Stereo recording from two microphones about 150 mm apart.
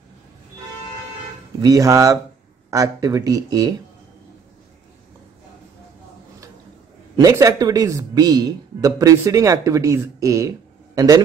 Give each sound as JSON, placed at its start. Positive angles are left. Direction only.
{"t": 1.6, "sound": "speech", "side_deg": -25}
{"t": 7.2, "sound": "speech", "side_deg": -20}